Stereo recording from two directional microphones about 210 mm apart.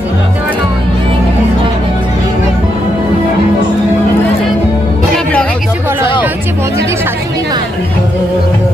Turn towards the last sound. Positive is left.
turn(degrees=-15)  # may be behind; listen again after turning